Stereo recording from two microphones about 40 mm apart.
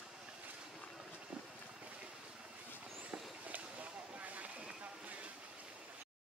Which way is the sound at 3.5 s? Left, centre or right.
Right.